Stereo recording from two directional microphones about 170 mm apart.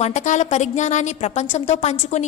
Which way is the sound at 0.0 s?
45° left (ahead or behind).